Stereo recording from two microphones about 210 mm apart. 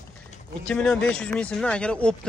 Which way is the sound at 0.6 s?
5° left (ahead or behind).